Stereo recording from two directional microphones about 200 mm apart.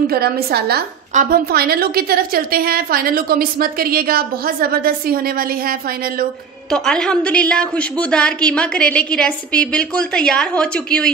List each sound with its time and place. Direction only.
0.0 s a woman's voice: 50° right (ahead or behind)
6.7 s a woman's voice: 5° left (ahead or behind)